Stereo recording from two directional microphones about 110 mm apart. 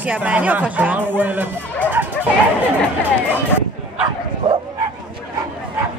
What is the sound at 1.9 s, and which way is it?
Dog, 15° right (ahead or behind).